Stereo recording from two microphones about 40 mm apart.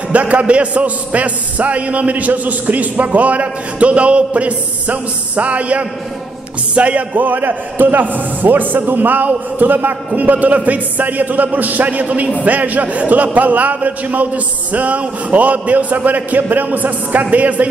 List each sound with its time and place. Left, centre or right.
0.1 s a man's voice: right
7.2 s a man's voice: right